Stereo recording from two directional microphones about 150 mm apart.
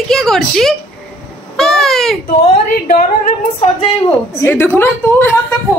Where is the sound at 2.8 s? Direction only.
60° left (ahead or behind).